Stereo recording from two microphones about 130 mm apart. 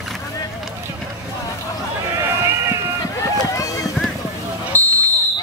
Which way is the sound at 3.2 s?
25° left (ahead or behind).